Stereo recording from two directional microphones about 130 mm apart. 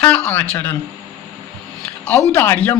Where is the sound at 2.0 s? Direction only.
10° left (ahead or behind).